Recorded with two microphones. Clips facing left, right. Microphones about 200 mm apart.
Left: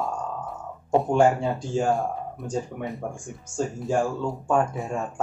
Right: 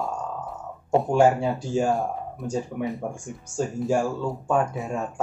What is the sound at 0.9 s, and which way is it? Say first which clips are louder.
Speech: right 1 dB; centre (ahead or behind).